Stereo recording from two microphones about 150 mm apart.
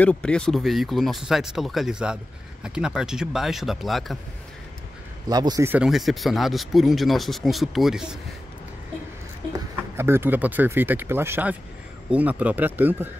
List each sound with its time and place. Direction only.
0.0 s speech: 5° left (ahead or behind)
5.3 s speech: 25° right (ahead or behind)
5.7 s speech: 5° right (ahead or behind)
9.5 s speech: 15° right (ahead or behind)